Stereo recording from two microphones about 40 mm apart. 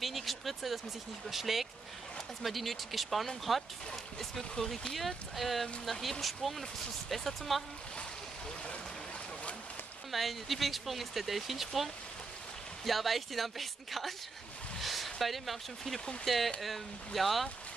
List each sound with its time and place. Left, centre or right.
0.0 s a sound: centre
1.3 s speech: centre
10.1 s speech: centre